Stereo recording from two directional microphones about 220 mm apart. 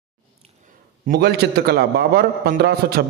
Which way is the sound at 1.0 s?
45° right (ahead or behind).